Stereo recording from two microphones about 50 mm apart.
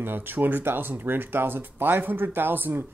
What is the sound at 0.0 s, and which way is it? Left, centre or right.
Speech, right.